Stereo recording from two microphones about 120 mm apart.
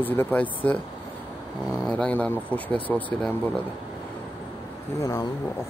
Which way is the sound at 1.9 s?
10° left (ahead or behind).